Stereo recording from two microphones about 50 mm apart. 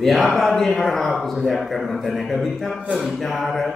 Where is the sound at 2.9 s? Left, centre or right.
Centre.